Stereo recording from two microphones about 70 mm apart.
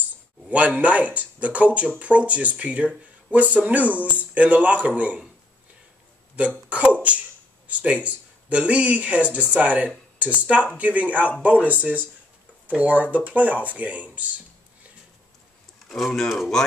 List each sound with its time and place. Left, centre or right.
0.5 s speech: right
6.7 s a sound: centre
7.6 s speech: centre
15.9 s speech: centre